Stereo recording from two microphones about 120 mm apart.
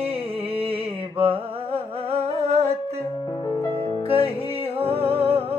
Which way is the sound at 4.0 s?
50° right (ahead or behind).